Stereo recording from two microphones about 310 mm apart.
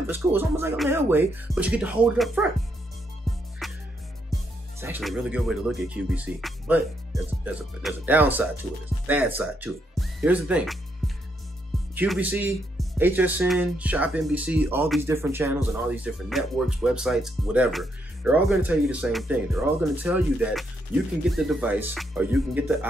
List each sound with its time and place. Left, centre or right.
0.0 s speech: centre
3.3 s music: centre
4.7 s speech: centre
7.8 s speech: centre
11.9 s speech: centre